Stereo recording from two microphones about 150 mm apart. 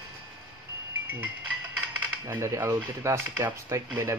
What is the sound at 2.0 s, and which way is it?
Speech, 20° right (ahead or behind).